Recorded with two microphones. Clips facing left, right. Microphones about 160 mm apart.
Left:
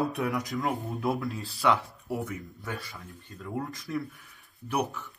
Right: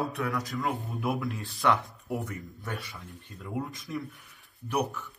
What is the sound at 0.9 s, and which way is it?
Speech, centre (ahead or behind).